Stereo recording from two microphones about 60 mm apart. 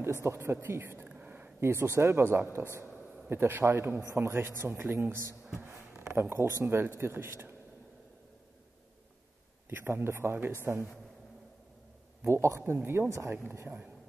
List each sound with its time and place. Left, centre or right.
0.0 s a man's voice: right
1.0 s a sound: right
1.6 s a man's voice: right
5.6 s a sound: right
6.6 s a man's voice: right
9.7 s a man's voice: right
12.3 s a man's voice: right